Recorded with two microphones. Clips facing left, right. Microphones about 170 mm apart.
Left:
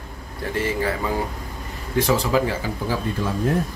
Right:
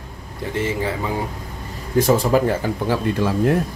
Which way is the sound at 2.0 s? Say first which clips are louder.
Right 4 dB; 45° right (ahead or behind).